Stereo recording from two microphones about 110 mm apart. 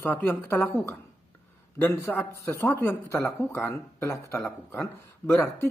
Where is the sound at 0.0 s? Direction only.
20° left (ahead or behind).